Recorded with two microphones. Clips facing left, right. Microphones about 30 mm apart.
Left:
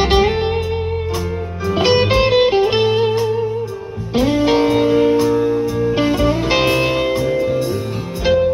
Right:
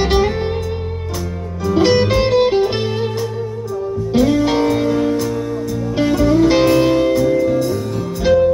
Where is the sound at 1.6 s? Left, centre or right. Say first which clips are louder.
Right 1 dB; left.